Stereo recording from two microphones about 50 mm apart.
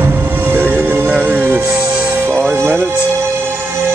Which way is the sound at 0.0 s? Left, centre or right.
Right.